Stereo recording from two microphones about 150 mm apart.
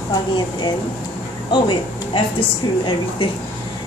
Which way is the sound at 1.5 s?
35° left (ahead or behind).